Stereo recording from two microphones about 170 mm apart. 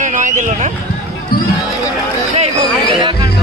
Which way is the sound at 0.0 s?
50° right (ahead or behind).